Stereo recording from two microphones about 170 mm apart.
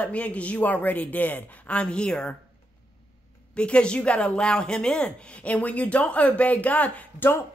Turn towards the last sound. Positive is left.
turn(degrees=10)  # may be behind; listen again after turning